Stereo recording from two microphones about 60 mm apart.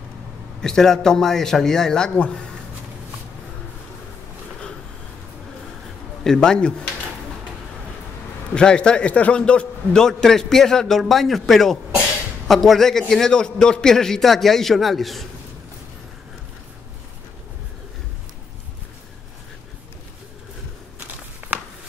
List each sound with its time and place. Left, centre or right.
0.6 s a man's voice: centre
6.2 s a man's voice: centre
8.5 s a man's voice: centre
10.0 s a man's voice: centre
21.4 s a sound: right